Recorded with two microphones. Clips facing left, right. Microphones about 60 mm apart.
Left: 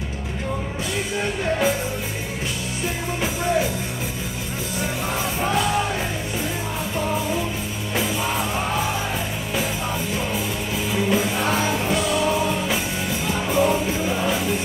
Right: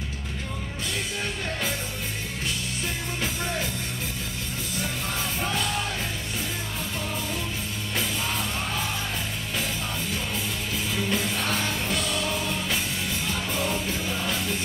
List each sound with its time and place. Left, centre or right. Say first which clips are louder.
1.2 s music: left 12 dB; centre
5.4 s music: left 8 dB; centre
7.9 s music: left 6 dB; centre
10.9 s music: left 7 dB; centre